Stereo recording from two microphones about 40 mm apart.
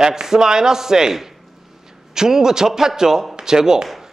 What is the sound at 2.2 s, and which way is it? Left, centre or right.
A man's voice, centre.